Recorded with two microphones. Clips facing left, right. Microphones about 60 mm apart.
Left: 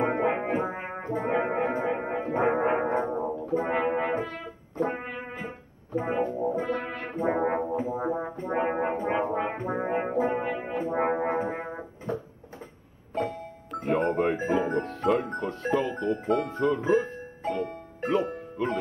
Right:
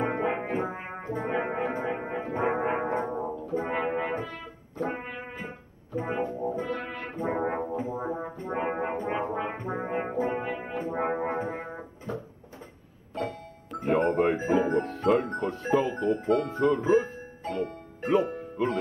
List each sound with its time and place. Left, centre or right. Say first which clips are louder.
0.0 s music: left 3 dB; centre
0.6 s brass instrument: left 2 dB; centre
1.4 s music: left 3 dB; centre
1.8 s music: left 3 dB; centre
2.6 s music: left 3 dB; centre
2.9 s brass instrument: left 2 dB; centre
7.4 s music: left 3 dB; centre
9.2 s music: left 3 dB; centre
9.7 s brass instrument: left 2 dB; centre
10.0 s brass instrument: left 3 dB; centre
13.7 s music: right 1 dB; centre